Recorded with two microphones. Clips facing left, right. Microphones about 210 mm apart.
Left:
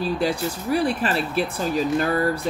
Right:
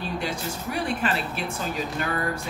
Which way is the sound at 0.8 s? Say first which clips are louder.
Left 4 dB; 35° left (ahead or behind).